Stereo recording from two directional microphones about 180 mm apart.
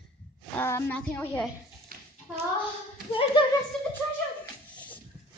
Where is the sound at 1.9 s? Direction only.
50° right (ahead or behind).